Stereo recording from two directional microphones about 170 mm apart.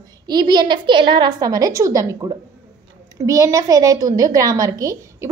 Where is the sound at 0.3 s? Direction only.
25° right (ahead or behind).